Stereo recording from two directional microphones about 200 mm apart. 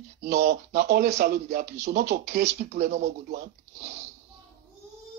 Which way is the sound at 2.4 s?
35° right (ahead or behind).